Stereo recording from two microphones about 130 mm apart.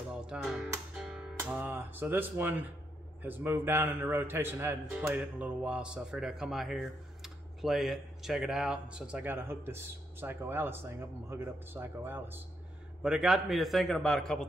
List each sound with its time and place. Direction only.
0.3 s music: 5° right (ahead or behind)
1.5 s speech: 15° right (ahead or behind)
13.0 s a man's voice: 5° right (ahead or behind)